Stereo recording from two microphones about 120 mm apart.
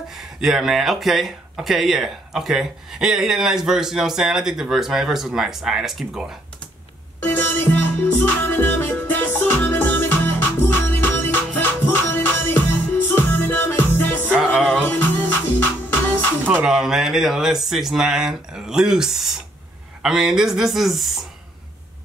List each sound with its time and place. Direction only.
0.1 s speech: 5° right (ahead or behind)
7.2 s music: 15° left (ahead or behind)
16.4 s speech: 10° right (ahead or behind)